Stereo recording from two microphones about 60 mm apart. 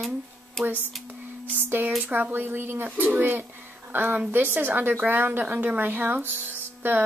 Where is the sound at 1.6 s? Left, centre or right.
Right.